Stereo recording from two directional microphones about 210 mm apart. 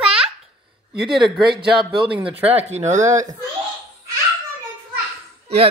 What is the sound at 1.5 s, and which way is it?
Speech, 25° right (ahead or behind).